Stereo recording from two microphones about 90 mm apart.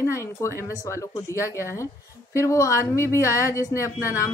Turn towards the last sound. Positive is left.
turn(degrees=35)  # may be behind; listen again after turning